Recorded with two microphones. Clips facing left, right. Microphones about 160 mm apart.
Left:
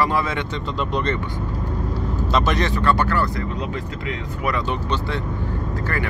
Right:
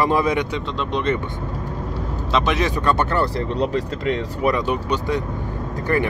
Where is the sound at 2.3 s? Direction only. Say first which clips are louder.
Right 1 dB; centre (ahead or behind).